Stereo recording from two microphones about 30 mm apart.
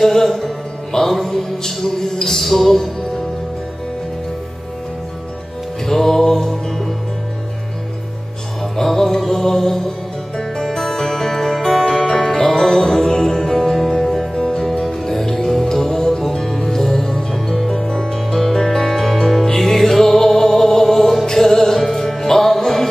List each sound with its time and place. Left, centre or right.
0.0 s music: centre
5.9 s music: centre
8.7 s music: centre
17.6 s music: centre
17.8 s music: centre